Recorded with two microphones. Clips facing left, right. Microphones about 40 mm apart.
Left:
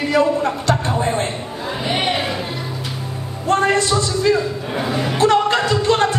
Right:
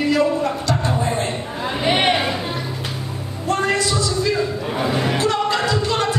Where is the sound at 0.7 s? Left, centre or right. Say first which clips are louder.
Left 2 dB; left.